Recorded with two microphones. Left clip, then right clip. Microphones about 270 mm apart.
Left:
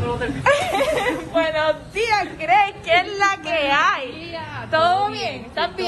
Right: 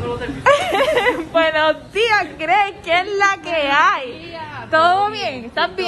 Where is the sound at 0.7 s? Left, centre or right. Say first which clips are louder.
Right 4 dB; right.